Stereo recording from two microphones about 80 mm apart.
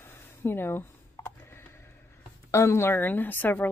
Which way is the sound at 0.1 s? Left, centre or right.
Left.